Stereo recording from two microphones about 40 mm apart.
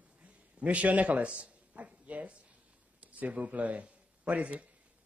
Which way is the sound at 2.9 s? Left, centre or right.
Right.